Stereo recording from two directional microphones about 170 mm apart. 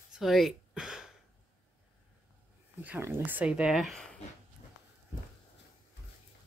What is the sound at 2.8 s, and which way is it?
Speech, 10° right (ahead or behind).